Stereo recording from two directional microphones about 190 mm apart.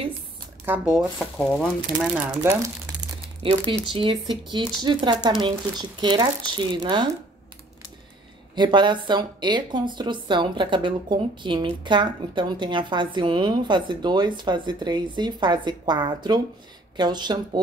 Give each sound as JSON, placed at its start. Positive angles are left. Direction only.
{"t": 0.7, "sound": "speech", "side_deg": -5}
{"t": 3.2, "sound": "speech", "side_deg": -25}
{"t": 8.5, "sound": "speech", "side_deg": -25}